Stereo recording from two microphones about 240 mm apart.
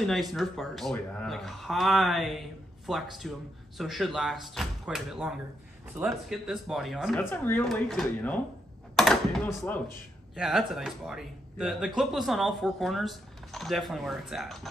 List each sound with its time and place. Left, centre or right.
0.0 s speech: centre